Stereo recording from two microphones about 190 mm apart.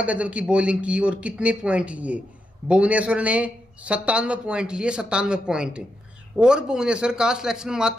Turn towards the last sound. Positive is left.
turn(degrees=-5)  # may be behind; listen again after turning